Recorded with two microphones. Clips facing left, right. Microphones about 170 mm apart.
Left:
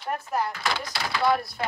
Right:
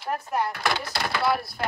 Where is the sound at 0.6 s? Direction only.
60° right (ahead or behind).